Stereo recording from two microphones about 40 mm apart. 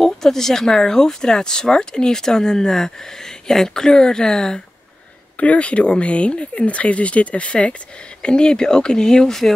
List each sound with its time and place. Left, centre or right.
0.0 s speech: centre
5.4 s speech: left; by 9.5 s centre